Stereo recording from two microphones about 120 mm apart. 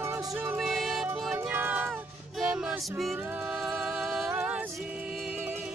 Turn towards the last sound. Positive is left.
turn(degrees=-10)  # may be behind; listen again after turning